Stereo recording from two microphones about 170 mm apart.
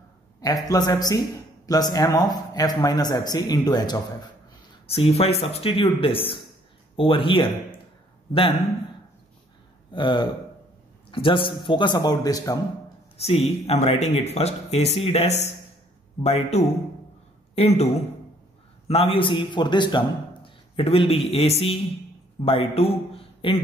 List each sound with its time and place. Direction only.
0.7 s a man's voice: 25° left (ahead or behind)
9.9 s a man's voice: 25° left (ahead or behind)
13.2 s a man's voice: 35° left (ahead or behind)